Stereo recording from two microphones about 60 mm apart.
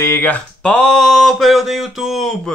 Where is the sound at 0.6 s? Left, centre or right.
Centre.